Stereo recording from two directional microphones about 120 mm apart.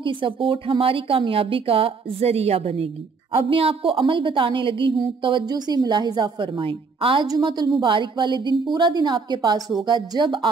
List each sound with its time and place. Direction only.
0.0 s a woman's voice: 45° right (ahead or behind)
7.2 s a woman's voice: 35° right (ahead or behind)